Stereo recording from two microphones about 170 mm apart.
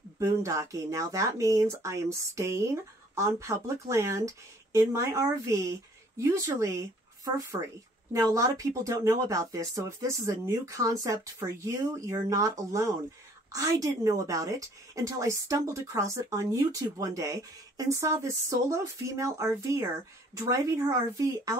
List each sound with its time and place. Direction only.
0.2 s a woman's voice: 20° right (ahead or behind)